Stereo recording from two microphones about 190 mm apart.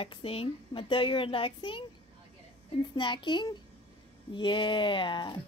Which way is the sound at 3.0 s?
25° left (ahead or behind).